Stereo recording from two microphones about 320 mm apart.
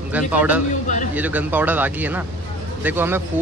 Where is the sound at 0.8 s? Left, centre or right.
Left.